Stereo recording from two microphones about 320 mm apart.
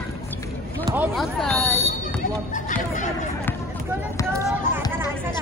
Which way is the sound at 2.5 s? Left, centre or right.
Left.